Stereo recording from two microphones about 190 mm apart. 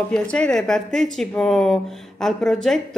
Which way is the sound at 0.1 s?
5° left (ahead or behind).